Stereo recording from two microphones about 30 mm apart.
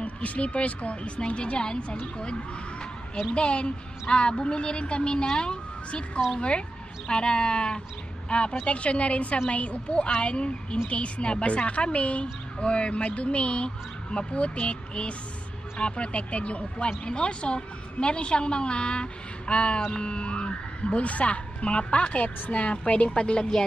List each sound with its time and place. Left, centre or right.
0.0 s speech: left
3.3 s speech: left